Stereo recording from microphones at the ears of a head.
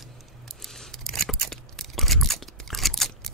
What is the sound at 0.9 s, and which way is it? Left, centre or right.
Scissors, right.